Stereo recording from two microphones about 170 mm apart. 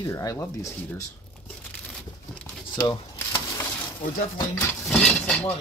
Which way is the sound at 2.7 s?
20° left (ahead or behind).